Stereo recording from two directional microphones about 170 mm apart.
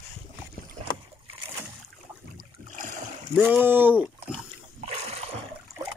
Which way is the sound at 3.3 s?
10° right (ahead or behind).